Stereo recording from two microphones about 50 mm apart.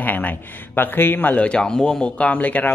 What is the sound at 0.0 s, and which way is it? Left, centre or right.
Speech, left.